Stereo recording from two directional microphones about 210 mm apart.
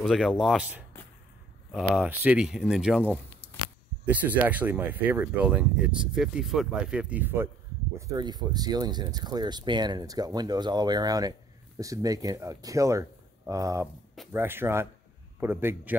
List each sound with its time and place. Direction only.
0.0 s speech: centre (ahead or behind)
8.1 s speech: 20° right (ahead or behind)